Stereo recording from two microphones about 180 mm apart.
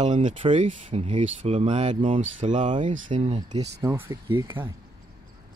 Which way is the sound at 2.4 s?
40° right (ahead or behind).